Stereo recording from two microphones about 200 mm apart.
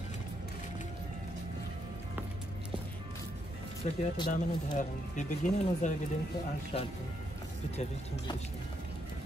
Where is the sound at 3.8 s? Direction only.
35° left (ahead or behind).